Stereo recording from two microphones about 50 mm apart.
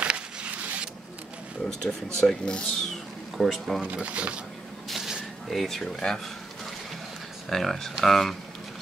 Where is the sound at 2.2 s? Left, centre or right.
Centre.